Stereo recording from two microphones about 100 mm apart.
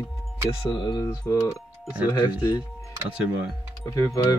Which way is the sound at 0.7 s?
50° left (ahead or behind).